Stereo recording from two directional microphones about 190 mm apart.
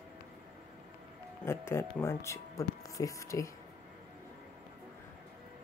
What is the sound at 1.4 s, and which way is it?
Speech, 15° left (ahead or behind).